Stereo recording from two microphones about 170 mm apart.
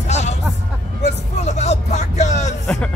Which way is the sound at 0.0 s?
40° left (ahead or behind).